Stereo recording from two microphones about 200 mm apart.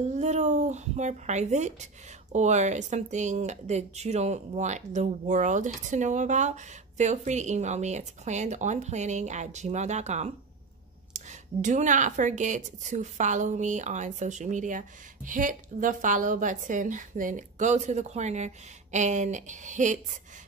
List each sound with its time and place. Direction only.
0.0 s a woman's voice: 35° right (ahead or behind)